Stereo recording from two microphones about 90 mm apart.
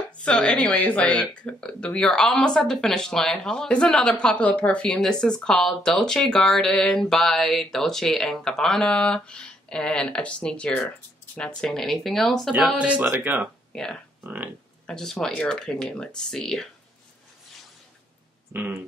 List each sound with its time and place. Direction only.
0.2 s speech: 10° left (ahead or behind)
12.7 s speech: 15° right (ahead or behind)
13.7 s speech: 10° left (ahead or behind)
14.2 s speech: 20° right (ahead or behind)
14.9 s speech: 10° left (ahead or behind)
18.5 s speech: 20° right (ahead or behind)